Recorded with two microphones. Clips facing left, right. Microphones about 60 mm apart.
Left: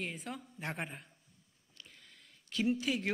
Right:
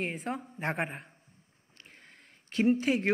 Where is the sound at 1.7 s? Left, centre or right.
Right.